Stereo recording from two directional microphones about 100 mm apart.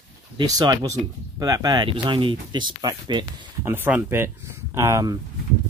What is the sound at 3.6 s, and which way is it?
Speech, 20° right (ahead or behind).